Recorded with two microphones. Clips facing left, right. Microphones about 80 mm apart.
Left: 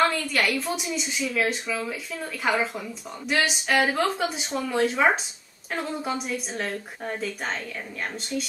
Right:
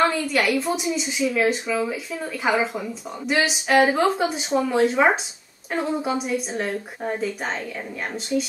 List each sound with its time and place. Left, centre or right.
0.0 s a woman's voice: centre